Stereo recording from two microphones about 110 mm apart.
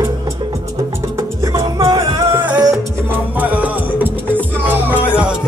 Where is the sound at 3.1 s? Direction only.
15° right (ahead or behind).